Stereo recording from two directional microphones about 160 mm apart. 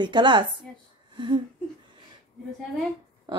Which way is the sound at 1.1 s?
30° right (ahead or behind).